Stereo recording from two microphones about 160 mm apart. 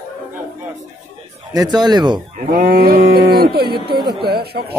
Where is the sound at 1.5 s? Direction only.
25° right (ahead or behind).